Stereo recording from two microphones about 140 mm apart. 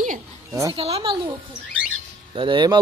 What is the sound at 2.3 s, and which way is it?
Speech, 35° right (ahead or behind).